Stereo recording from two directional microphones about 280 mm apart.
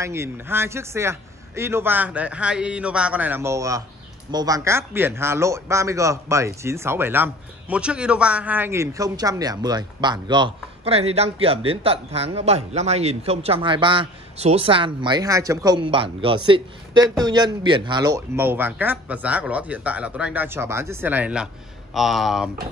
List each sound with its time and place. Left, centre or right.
0.0 s speech: centre